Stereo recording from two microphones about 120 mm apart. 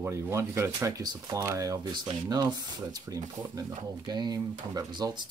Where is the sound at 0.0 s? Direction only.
20° right (ahead or behind).